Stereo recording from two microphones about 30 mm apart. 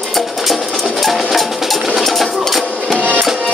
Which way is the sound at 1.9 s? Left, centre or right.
Centre.